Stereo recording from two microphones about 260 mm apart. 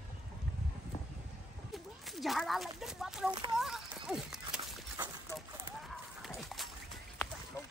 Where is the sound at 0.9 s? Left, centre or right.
Left.